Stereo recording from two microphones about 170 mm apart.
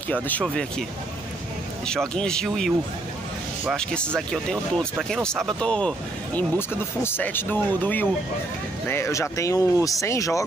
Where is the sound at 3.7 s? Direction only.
5° left (ahead or behind).